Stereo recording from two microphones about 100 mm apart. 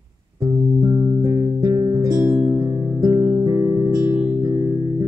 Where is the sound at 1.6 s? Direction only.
40° right (ahead or behind).